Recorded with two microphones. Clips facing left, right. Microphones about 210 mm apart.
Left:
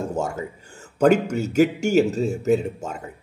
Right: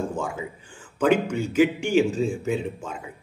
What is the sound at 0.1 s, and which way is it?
Speech, 45° left (ahead or behind).